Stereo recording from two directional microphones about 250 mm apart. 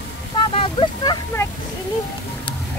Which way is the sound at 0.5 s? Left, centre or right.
Left.